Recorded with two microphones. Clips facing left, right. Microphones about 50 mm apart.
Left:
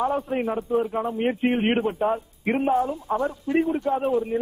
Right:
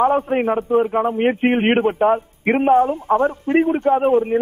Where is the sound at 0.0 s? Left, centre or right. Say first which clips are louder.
Right 8 dB; right.